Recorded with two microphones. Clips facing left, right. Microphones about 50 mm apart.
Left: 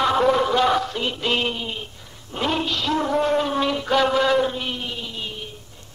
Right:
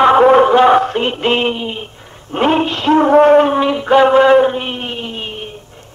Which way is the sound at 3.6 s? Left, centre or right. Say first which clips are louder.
Right 9 dB; right.